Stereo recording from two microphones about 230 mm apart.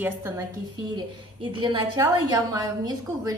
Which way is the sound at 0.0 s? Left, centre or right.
Centre.